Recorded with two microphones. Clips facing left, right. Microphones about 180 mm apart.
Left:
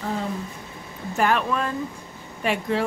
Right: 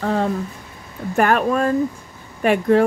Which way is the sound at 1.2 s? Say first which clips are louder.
Right 5 dB; 50° right (ahead or behind).